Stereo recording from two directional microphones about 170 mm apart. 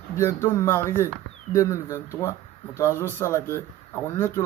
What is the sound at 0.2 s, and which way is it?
Speech, 15° left (ahead or behind).